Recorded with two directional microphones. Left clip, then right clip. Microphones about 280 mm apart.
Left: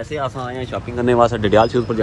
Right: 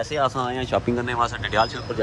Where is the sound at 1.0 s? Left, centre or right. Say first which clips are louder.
Left 9 dB; centre.